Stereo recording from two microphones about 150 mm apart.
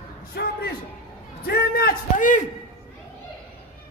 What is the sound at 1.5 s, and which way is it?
Speech, 90° left.